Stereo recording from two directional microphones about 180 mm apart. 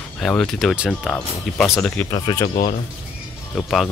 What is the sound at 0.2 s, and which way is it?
Speech, 5° left (ahead or behind).